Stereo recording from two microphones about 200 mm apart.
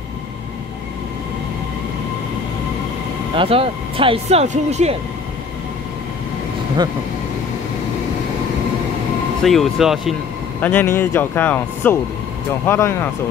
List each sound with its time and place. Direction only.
3.3 s speech: 25° right (ahead or behind)
9.4 s speech: centre (ahead or behind)
10.6 s speech: 10° left (ahead or behind)